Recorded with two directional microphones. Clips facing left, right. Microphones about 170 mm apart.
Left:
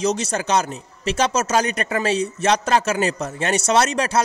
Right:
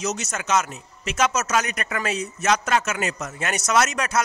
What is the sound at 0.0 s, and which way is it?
A man's voice, 30° left (ahead or behind).